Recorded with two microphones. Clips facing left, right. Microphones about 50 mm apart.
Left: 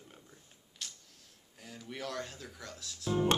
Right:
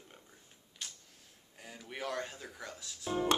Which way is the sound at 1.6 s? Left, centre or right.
Centre.